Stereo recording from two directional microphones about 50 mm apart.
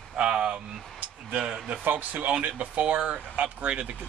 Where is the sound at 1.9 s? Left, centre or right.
Right.